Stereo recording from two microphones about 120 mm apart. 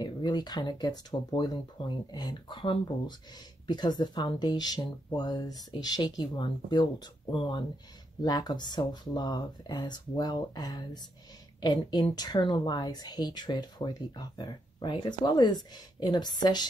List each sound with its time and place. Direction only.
0.0 s speech: 35° left (ahead or behind)